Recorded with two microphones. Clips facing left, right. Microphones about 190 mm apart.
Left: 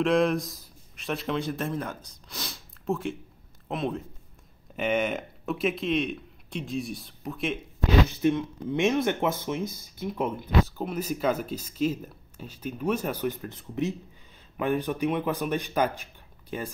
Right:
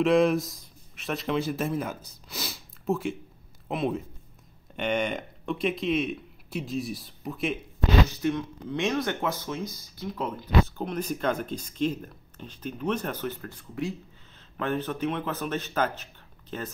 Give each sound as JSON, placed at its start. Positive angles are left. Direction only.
{"t": 0.0, "sound": "speech", "side_deg": 0}
{"t": 8.2, "sound": "speech", "side_deg": 20}
{"t": 10.8, "sound": "speech", "side_deg": 5}